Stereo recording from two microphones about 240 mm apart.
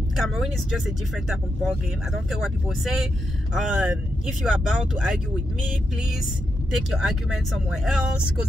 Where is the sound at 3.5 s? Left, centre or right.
Centre.